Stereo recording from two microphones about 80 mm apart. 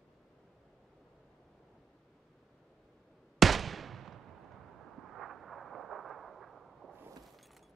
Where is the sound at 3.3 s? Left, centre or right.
Centre.